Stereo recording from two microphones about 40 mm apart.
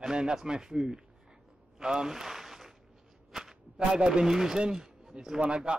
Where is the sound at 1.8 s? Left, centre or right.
Centre.